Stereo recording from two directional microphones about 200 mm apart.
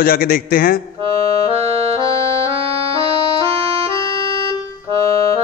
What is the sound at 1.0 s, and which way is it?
Accordion, 30° right (ahead or behind).